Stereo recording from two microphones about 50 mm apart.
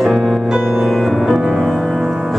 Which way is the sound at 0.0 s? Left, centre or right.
Centre.